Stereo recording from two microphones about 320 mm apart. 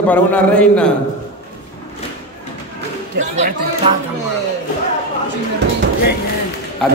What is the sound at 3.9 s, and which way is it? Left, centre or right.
Speech, centre.